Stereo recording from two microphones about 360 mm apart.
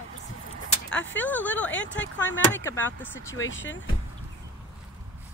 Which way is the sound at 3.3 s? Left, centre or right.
Left.